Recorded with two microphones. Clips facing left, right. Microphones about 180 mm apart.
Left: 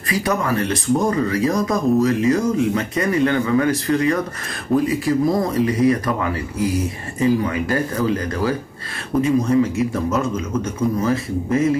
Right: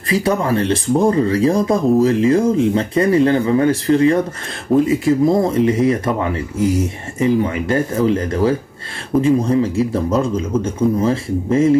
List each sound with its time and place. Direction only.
0.1 s speech: 30° right (ahead or behind)